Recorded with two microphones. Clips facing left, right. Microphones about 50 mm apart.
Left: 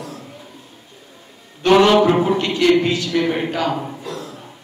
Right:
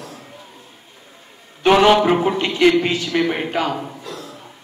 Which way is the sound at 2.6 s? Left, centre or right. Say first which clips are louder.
Right 1 dB; right.